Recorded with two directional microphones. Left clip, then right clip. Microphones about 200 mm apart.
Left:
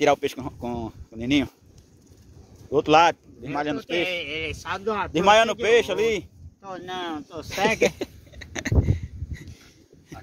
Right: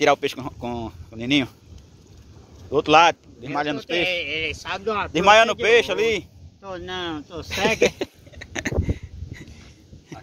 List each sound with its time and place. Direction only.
0.0 s speech: 25° left (ahead or behind)
2.7 s speech: 30° left (ahead or behind)
4.1 s speech: 55° left (ahead or behind)
5.1 s speech: 25° left (ahead or behind)
6.6 s speech: 55° left (ahead or behind)
7.4 s a sound: 10° left (ahead or behind)